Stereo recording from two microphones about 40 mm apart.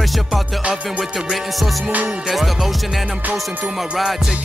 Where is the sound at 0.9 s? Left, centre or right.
Centre.